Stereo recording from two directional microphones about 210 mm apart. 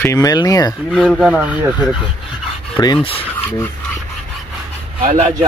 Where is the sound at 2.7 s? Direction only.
20° left (ahead or behind).